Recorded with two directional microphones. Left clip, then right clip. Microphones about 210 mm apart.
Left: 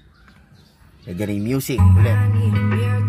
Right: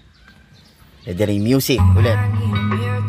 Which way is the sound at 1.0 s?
30° right (ahead or behind).